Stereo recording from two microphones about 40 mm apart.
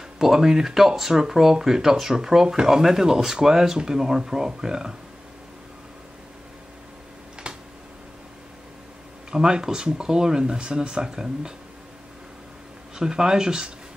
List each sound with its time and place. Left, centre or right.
0.2 s speech: centre
7.5 s tick-tock: right
9.3 s speech: centre
12.9 s speech: centre